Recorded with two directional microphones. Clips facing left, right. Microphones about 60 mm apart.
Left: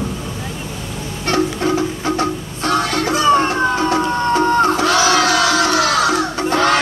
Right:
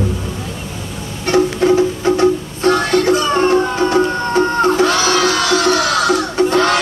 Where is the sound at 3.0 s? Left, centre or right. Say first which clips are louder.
Right 1 dB; left.